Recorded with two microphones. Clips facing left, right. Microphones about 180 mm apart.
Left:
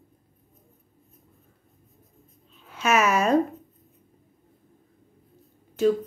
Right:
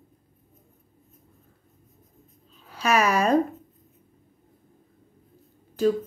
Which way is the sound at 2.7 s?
35° right (ahead or behind).